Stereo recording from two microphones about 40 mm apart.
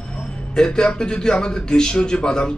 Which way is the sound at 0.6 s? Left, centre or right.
Centre.